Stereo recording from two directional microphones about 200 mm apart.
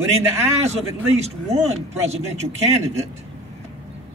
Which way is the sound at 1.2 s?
35° right (ahead or behind).